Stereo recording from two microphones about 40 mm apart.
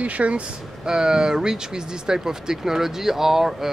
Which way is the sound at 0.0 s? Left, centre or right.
Right.